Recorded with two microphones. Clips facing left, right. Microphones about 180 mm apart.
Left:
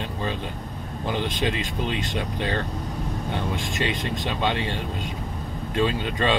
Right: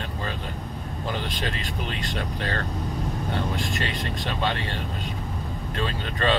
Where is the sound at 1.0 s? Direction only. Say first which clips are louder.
Left 5 dB; 15° left (ahead or behind).